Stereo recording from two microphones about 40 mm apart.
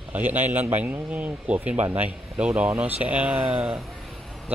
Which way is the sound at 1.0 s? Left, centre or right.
Right.